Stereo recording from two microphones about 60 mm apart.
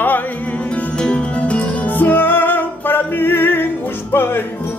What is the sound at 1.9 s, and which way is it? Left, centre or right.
Music, left.